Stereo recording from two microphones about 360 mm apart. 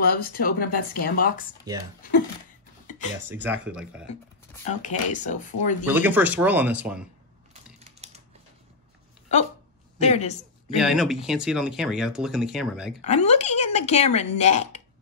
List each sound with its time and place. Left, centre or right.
0.0 s speech: left
2.9 s a sound: centre
3.2 s speech: centre
4.6 s speech: centre
5.9 s speech: centre
9.9 s a man's voice: centre
10.8 s speech: centre
13.0 s speech: centre